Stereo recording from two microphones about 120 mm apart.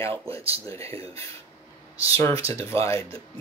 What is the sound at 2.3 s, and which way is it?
Speech, 55° right (ahead or behind).